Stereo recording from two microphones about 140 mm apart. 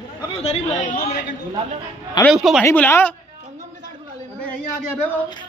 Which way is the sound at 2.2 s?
Centre (ahead or behind).